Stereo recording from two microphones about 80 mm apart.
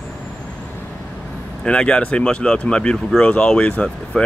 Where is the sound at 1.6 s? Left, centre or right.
Centre.